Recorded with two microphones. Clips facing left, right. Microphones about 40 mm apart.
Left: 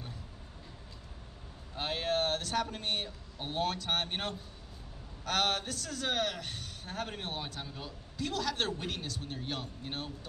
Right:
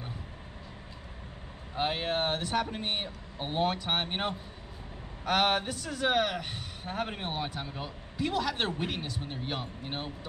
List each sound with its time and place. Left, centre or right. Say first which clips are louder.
1.8 s a man's voice: right 2 dB; right